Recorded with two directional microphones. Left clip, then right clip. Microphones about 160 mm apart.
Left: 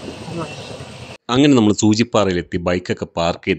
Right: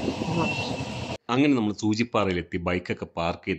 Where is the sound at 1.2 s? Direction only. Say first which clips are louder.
Left 10 dB; 35° left (ahead or behind).